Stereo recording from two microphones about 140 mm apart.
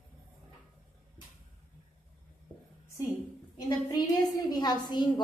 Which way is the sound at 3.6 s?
30° left (ahead or behind).